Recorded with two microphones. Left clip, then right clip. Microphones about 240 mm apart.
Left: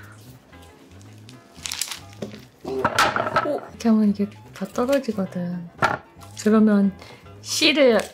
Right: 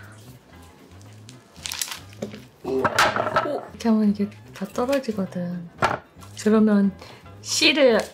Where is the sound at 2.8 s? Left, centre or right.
Centre.